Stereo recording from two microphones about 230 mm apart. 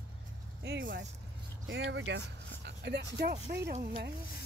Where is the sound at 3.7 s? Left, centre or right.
Right.